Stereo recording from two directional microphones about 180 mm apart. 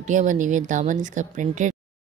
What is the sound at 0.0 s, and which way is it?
Speech, 45° right (ahead or behind).